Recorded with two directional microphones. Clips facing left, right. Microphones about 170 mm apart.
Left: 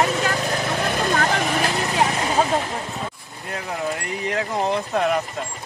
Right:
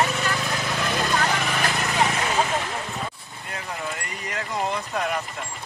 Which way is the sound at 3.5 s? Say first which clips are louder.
Left 6 dB; 45° left (ahead or behind).